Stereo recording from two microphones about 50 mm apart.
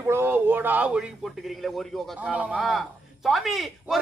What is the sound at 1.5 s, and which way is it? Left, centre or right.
Speech, centre.